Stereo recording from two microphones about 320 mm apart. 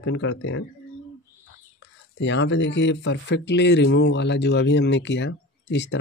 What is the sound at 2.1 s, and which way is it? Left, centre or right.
Speech, left.